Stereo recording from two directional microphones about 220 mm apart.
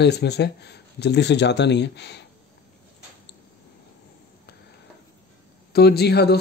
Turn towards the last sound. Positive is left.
turn(degrees=45)  # may be behind; listen again after turning